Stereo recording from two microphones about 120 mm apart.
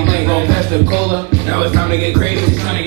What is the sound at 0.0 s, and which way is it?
Music, 20° right (ahead or behind).